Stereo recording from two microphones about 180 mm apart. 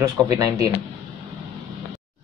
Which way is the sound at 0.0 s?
15° right (ahead or behind).